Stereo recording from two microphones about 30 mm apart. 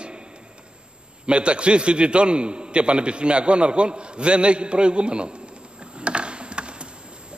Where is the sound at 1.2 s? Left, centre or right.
Right.